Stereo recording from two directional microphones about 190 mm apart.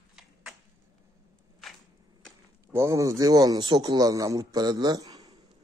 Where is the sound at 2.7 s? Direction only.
15° right (ahead or behind).